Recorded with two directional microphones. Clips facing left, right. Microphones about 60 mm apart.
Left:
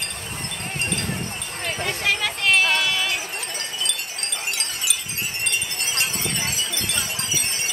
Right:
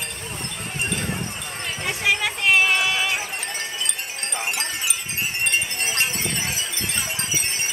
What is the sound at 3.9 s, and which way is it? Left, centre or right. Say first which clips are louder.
Wind chime: right 1 dB; right.